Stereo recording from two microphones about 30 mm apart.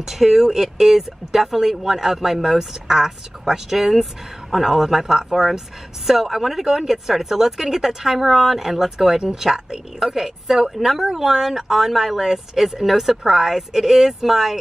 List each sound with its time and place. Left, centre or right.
0.0 s speech: centre
6.2 s speech: centre
6.6 s speech: centre